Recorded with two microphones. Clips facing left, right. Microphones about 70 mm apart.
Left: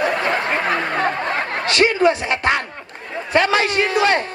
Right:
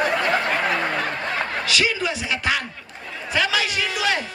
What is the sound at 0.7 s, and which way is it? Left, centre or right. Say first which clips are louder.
Speech: left 4 dB; left.